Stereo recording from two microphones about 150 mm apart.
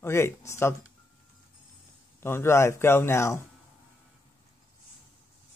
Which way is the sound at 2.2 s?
15° left (ahead or behind).